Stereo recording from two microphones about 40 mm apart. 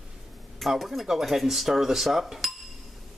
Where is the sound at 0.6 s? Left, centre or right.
Centre.